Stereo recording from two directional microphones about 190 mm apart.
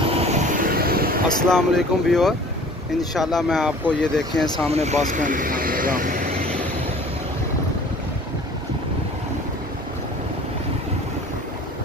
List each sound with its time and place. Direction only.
0.1 s vehicle: 35° right (ahead or behind); by 1.2 s 50° right (ahead or behind)
1.5 s speech: centre (ahead or behind)
4.6 s speech: 35° right (ahead or behind)